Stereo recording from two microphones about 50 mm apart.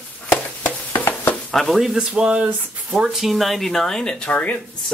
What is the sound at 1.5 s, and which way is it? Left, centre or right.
Speech, centre.